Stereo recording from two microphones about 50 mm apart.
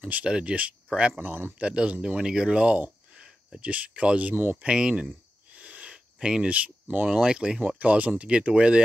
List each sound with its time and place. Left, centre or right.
0.2 s speech: right
1.2 s speech: right
1.6 s speech: right
4.6 s speech: centre
5.6 s a sound: right
6.1 s speech: centre
6.5 s speech: right
7.2 s speech: centre